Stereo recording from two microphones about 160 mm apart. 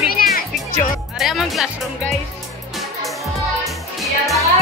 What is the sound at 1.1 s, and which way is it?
Music, centre (ahead or behind).